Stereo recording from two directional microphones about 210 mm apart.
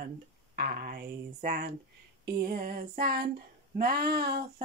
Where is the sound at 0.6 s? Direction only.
45° right (ahead or behind).